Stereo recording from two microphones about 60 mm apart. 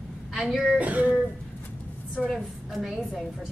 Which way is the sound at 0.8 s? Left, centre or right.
Right.